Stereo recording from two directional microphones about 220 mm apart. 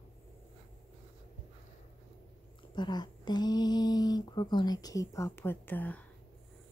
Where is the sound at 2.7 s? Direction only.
20° left (ahead or behind).